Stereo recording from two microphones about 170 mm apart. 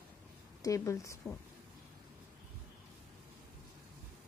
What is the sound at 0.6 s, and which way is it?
Speech, 20° left (ahead or behind).